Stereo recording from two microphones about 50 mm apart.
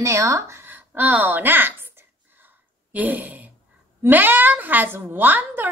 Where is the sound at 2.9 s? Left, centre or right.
Right.